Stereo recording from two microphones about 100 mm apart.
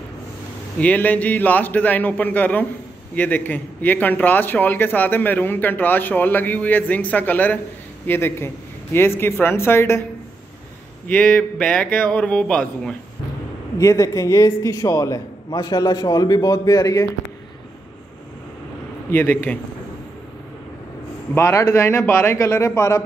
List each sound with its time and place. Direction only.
0.7 s a man's voice: 15° left (ahead or behind)
11.1 s a man's voice: 15° left (ahead or behind)
13.7 s a man's voice: 35° left (ahead or behind)
19.0 s a man's voice: 20° left (ahead or behind)
21.4 s a man's voice: 30° left (ahead or behind)